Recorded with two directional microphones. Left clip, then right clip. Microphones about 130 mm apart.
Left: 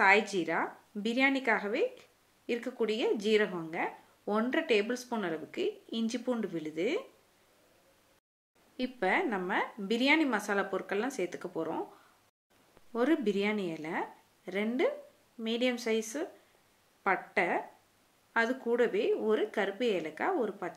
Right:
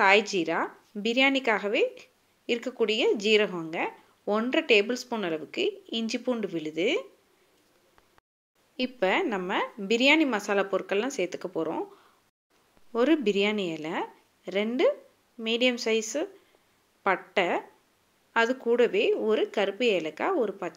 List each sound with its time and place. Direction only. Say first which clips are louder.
0.0 s a woman's voice: right 4 dB; 30° right (ahead or behind)
8.7 s a woman's voice: right 4 dB; 30° right (ahead or behind)
12.9 s a woman's voice: right 6 dB; 25° right (ahead or behind)